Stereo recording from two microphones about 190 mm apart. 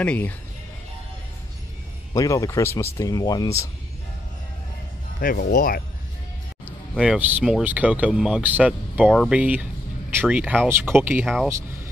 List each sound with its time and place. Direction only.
0.0 s speech: 5° left (ahead or behind)
2.1 s speech: 15° left (ahead or behind)
5.2 s speech: 50° left (ahead or behind)
6.6 s speech: 5° right (ahead or behind)
9.1 s speech: 5° left (ahead or behind)
9.4 s speech: 5° right (ahead or behind)